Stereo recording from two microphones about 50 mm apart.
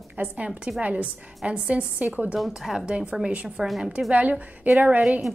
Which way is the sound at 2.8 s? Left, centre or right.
Centre.